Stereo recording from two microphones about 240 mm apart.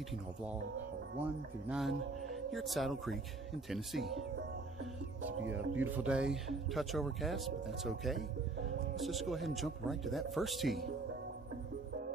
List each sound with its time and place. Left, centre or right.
1.7 s speech: centre
5.4 s speech: right
5.9 s speech: centre